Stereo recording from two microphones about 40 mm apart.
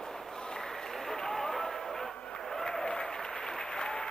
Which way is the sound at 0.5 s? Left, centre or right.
Centre.